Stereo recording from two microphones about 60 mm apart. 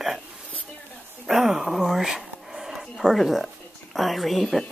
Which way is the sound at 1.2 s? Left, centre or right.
Centre.